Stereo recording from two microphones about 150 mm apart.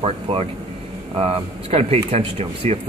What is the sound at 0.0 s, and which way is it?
A man's voice, 40° right (ahead or behind).